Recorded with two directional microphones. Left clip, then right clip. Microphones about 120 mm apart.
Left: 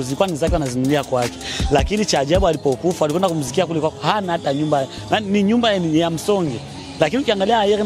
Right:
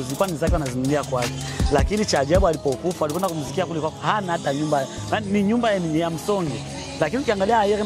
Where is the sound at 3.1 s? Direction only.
60° left (ahead or behind).